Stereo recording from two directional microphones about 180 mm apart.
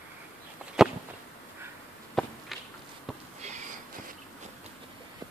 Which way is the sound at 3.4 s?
40° right (ahead or behind).